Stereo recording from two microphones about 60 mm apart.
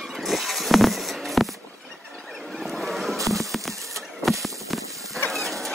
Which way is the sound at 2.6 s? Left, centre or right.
Centre.